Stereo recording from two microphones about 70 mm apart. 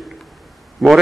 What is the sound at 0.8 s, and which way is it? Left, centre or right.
Speech, centre.